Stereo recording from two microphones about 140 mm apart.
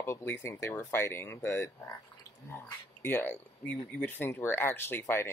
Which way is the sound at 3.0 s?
15° left (ahead or behind).